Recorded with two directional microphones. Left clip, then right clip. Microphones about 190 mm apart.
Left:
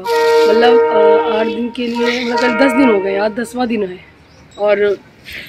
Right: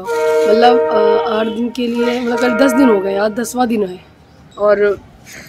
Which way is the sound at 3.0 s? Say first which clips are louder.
Even; 10° right (ahead or behind).